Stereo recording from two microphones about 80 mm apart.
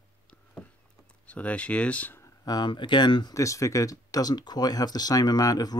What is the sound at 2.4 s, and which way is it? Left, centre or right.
Speech, left.